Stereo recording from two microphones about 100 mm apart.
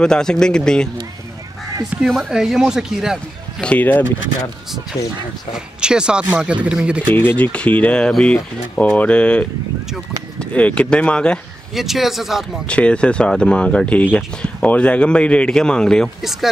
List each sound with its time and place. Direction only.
0.0 s speech: 5° left (ahead or behind)
2.0 s speech: centre (ahead or behind)
3.6 s speech: 15° left (ahead or behind)
5.8 s speech: 10° right (ahead or behind)
7.2 s speech: 20° left (ahead or behind)
10.5 s speech: 10° left (ahead or behind)
11.7 s speech: 5° right (ahead or behind)
12.6 s speech: 10° left (ahead or behind)